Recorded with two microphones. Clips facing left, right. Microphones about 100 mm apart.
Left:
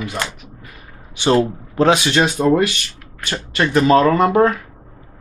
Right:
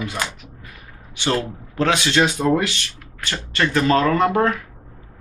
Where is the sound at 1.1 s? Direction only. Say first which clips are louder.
Left 7 dB; 20° left (ahead or behind).